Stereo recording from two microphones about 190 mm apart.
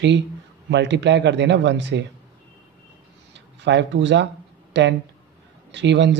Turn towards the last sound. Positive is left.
turn(degrees=-70)  # may be behind; listen again after turning